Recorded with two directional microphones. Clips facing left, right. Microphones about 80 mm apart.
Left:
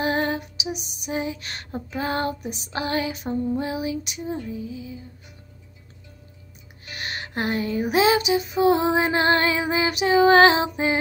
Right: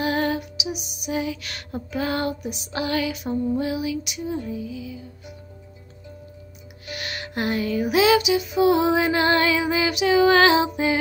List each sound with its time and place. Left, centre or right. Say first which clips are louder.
0.0 s lullaby: right 1 dB; left
6.9 s lullaby: right 1 dB; left